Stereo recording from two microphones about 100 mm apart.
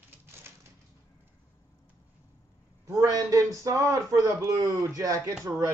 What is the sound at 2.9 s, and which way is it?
Speech, 30° right (ahead or behind).